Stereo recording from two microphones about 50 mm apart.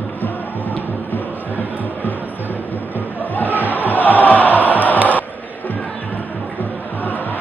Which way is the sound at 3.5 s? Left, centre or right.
Right.